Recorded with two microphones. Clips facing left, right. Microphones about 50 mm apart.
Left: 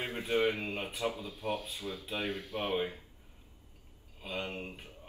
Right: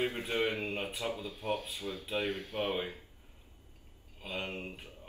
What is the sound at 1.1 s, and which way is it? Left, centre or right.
Speech, right.